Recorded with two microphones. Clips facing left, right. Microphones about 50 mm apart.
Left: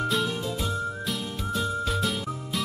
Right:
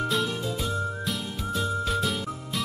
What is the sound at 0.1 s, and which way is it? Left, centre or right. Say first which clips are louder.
Whistle: even; centre.